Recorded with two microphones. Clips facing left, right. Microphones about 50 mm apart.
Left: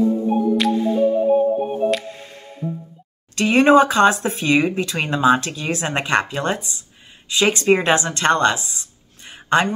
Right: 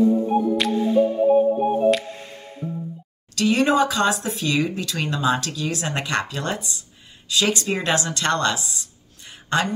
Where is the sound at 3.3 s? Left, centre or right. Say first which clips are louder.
Left 5 dB; left.